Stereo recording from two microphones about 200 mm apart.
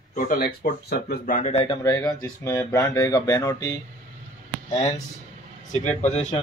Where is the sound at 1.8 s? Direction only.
20° left (ahead or behind).